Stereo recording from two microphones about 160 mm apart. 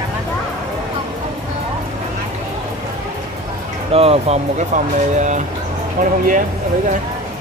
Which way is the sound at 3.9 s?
40° right (ahead or behind).